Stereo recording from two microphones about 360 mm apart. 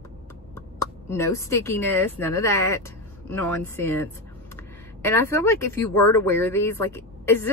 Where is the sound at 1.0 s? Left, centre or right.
Centre.